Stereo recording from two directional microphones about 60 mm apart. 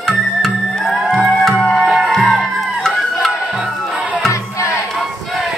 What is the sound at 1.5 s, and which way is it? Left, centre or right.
Music, centre.